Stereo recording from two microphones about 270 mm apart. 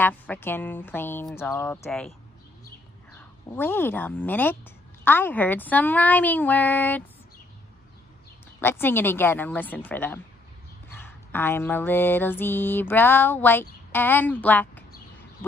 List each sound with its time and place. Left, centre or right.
0.0 s speech: centre
3.5 s speech: centre
8.5 s speech: centre
10.9 s a sound: centre